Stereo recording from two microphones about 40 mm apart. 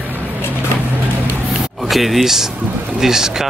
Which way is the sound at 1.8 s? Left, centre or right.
Centre.